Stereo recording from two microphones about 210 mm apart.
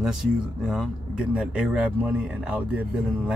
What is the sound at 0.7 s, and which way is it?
Speech, 5° right (ahead or behind).